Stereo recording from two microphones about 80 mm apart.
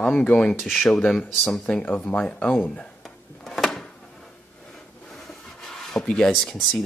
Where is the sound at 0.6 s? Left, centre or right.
Centre.